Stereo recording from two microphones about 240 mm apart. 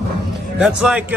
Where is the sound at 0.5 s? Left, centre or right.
Centre.